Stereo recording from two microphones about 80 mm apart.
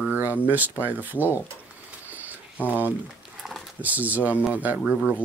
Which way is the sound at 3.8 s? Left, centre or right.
Centre.